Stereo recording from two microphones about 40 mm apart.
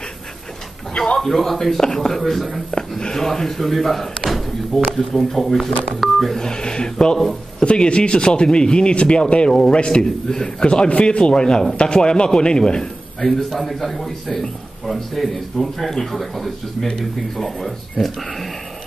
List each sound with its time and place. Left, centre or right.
0.9 s speech: centre
1.2 s a man's voice: centre
6.3 s speech: centre
10.0 s speech: centre
10.7 s speech: left
13.3 s a man's voice: centre